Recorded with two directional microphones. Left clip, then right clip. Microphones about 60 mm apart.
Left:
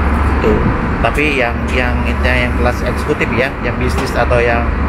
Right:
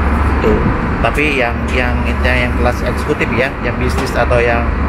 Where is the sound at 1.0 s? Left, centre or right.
Right.